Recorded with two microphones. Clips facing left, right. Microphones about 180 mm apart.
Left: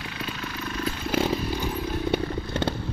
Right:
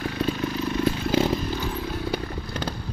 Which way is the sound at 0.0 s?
40° right (ahead or behind).